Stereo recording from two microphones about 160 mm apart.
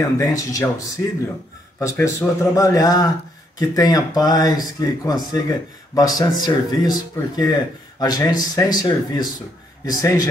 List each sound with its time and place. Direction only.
0.0 s speech: 20° left (ahead or behind)